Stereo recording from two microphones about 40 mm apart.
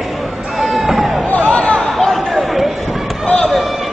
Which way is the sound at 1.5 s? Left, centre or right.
Left.